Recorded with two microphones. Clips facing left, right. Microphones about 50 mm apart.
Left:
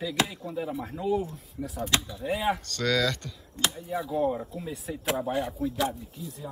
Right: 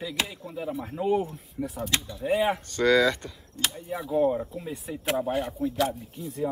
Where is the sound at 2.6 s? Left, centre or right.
Centre.